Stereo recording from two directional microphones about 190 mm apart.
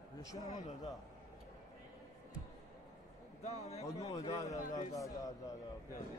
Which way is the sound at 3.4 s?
35° left (ahead or behind).